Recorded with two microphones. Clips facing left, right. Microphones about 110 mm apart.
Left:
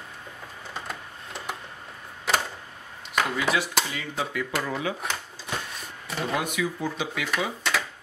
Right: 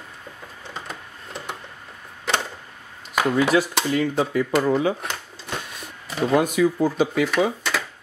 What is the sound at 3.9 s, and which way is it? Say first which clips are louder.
Speech: right 10 dB; 45° right (ahead or behind).